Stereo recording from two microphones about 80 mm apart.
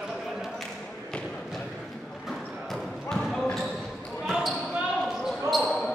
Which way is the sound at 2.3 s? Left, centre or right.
Centre.